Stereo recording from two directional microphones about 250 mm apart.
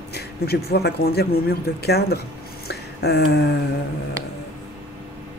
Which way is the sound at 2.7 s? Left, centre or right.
Left.